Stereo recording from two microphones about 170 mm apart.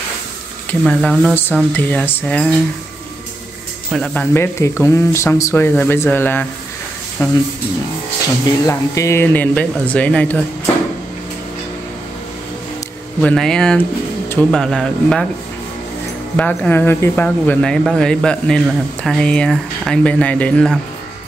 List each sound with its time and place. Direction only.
0.7 s speech: 5° left (ahead or behind)
3.9 s speech: 5° left (ahead or behind)
8.6 s speech: 15° left (ahead or behind)
13.2 s speech: 5° left (ahead or behind)
16.3 s speech: 10° left (ahead or behind)